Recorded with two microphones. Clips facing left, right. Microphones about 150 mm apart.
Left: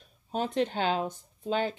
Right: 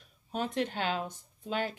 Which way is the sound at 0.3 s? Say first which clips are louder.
Left 4 dB; 35° left (ahead or behind).